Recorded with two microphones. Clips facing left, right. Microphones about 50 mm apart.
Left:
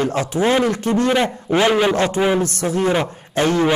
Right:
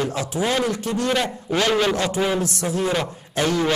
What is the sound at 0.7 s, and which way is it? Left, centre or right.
Speech, left.